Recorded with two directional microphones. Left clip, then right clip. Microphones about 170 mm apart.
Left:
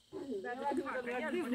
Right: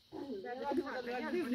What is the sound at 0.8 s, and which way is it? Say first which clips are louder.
Speech: left 2 dB; 10° right (ahead or behind).